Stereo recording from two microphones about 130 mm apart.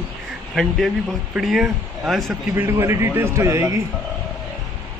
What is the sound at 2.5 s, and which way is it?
A man's voice, 20° right (ahead or behind).